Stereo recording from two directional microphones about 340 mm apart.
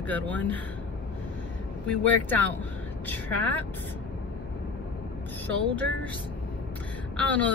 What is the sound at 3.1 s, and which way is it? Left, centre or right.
Speech, centre.